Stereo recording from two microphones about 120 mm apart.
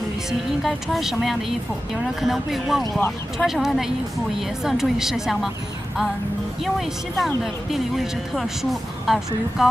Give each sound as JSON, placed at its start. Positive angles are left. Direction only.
{"t": 0.3, "sound": "speech", "side_deg": 0}
{"t": 6.6, "sound": "speech", "side_deg": 0}